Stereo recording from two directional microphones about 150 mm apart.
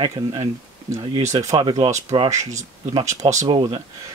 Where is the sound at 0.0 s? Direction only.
35° right (ahead or behind).